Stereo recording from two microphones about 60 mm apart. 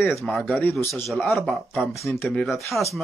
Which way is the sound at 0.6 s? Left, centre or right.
Left.